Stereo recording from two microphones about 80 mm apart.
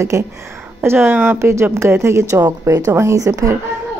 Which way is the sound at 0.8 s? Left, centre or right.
Right.